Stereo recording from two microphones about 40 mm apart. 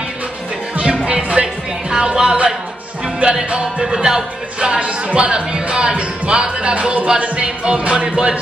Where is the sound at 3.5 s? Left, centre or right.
Right.